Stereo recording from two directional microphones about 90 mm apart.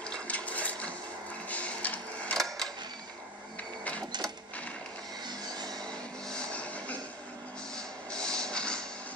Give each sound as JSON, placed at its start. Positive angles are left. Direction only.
{"t": 0.0, "sound": "a sound", "side_deg": 15}
{"t": 1.5, "sound": "printer", "side_deg": 15}
{"t": 2.3, "sound": "cash register", "side_deg": 5}
{"t": 5.2, "sound": "vehicle", "side_deg": -50}
{"t": 5.8, "sound": "vehicle", "side_deg": 10}
{"t": 7.7, "sound": "music", "side_deg": 10}